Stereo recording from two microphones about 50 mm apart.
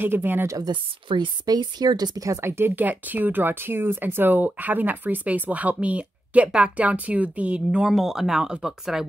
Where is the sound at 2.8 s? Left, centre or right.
Right.